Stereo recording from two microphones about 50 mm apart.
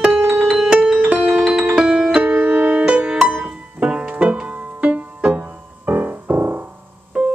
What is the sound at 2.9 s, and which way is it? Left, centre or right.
Music, right.